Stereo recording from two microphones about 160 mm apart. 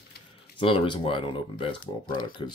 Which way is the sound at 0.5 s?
35° left (ahead or behind).